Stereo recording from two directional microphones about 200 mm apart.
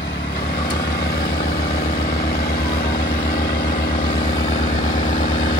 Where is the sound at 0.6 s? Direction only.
55° left (ahead or behind).